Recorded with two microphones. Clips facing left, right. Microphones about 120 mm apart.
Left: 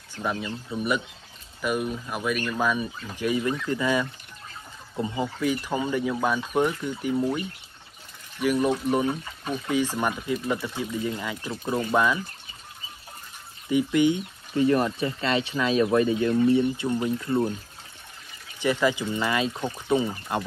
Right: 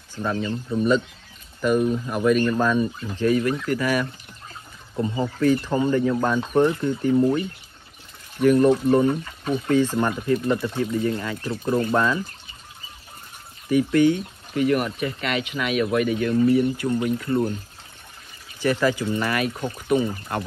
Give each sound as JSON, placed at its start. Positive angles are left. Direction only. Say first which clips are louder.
{"t": 0.2, "sound": "speech", "louder": "right 4 dB", "side_deg": 10}
{"t": 5.0, "sound": "speech", "louder": "right 5 dB", "side_deg": 15}
{"t": 11.1, "sound": "speech", "louder": "right 5 dB", "side_deg": 15}
{"t": 11.4, "sound": "speech", "louder": "right 6 dB", "side_deg": 5}
{"t": 13.7, "sound": "speech", "louder": "right 3 dB", "side_deg": 20}
{"t": 18.6, "sound": "speech", "louder": "right 2 dB", "side_deg": 20}